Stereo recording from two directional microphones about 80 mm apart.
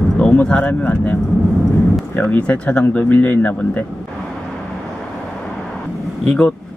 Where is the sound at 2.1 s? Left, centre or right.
Centre.